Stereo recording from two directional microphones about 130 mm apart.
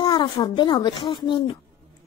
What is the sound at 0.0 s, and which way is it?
Speech, 30° left (ahead or behind).